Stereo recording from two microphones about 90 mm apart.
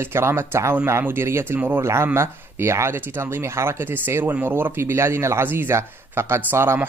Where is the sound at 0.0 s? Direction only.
30° right (ahead or behind).